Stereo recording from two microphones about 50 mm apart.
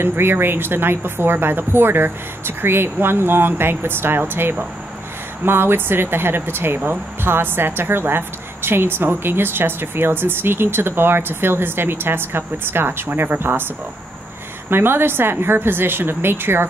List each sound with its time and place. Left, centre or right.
0.0 s a woman's voice: right
14.7 s a woman's voice: right